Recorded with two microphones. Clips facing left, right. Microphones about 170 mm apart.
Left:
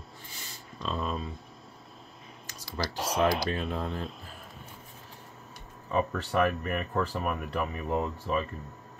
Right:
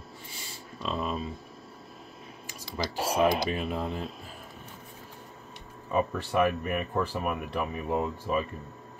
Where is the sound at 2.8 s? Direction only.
10° right (ahead or behind).